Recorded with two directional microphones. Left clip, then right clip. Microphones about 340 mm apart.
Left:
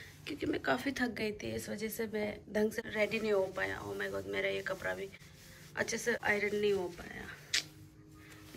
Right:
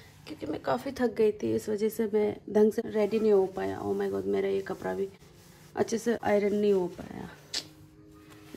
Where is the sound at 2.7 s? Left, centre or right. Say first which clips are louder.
Right 6 dB; centre.